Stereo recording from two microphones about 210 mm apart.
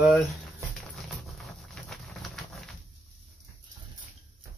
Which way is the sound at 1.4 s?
Centre (ahead or behind).